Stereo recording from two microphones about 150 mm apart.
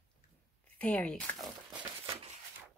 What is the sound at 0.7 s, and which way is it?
Speech, 10° left (ahead or behind).